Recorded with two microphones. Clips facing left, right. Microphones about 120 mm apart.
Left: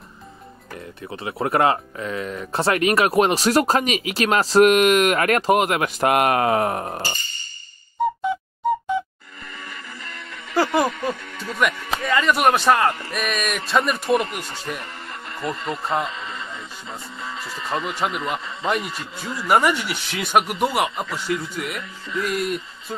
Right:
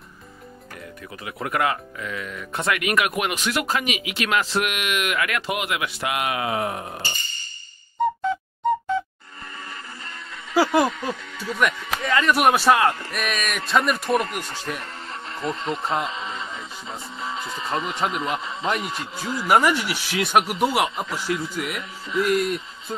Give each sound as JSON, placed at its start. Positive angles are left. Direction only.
{"t": 1.1, "sound": "speech", "side_deg": 30}
{"t": 8.0, "sound": "music", "side_deg": 5}
{"t": 10.5, "sound": "snicker", "side_deg": -5}
{"t": 10.9, "sound": "music", "side_deg": 55}
{"t": 12.0, "sound": "speech", "side_deg": 0}
{"t": 16.3, "sound": "music", "side_deg": 0}
{"t": 17.6, "sound": "speech", "side_deg": 0}